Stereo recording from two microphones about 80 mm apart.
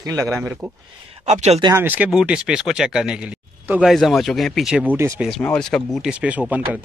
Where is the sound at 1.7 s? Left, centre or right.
Right.